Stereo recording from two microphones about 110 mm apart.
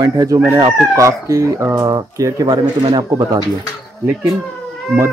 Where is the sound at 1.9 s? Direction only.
40° right (ahead or behind).